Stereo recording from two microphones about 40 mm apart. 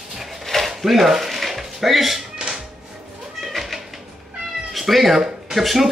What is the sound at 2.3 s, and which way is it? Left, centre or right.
Music, centre.